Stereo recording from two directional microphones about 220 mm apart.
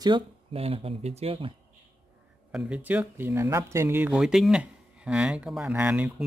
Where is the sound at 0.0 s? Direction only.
25° right (ahead or behind).